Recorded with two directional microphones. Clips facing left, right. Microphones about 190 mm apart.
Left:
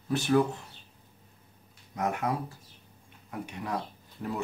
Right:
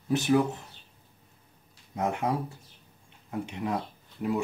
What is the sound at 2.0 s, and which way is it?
Speech, 25° right (ahead or behind).